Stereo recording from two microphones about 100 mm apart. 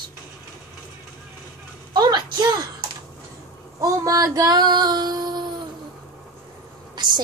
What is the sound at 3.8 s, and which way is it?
Female singing, 35° right (ahead or behind).